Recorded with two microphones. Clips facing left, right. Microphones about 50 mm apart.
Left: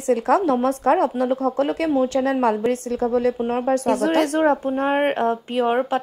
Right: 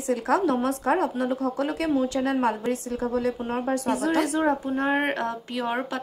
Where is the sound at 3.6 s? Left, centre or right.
Left.